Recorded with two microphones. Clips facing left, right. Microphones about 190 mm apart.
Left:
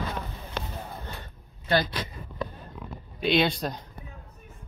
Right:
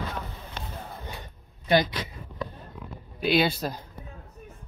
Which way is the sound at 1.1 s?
15° right (ahead or behind).